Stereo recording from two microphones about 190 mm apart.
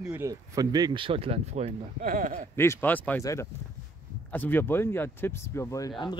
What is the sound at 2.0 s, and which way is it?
Speech, 45° right (ahead or behind).